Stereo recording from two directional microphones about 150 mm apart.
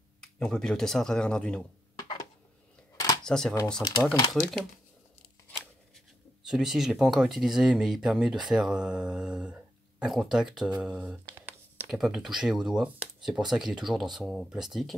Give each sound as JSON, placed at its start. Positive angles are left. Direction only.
{"t": 0.2, "sound": "speech", "side_deg": 5}
{"t": 2.0, "sound": "a sound", "side_deg": 25}
{"t": 3.3, "sound": "speech", "side_deg": 5}
{"t": 3.8, "sound": "speech", "side_deg": 25}
{"t": 4.3, "sound": "speech", "side_deg": 0}
{"t": 6.4, "sound": "speech", "side_deg": -5}